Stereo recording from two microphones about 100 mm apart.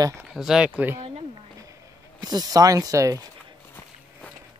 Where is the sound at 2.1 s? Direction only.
40° right (ahead or behind).